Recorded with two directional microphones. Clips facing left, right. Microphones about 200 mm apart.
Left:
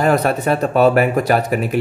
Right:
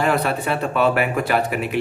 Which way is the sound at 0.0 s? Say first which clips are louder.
Left 5 dB; 40° left (ahead or behind).